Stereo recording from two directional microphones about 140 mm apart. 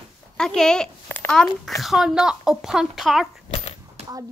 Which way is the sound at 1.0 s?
15° left (ahead or behind).